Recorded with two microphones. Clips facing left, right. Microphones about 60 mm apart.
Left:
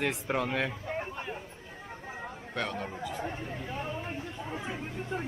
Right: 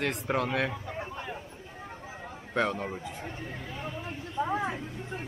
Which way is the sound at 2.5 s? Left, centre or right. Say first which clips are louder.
Right 6 dB; centre.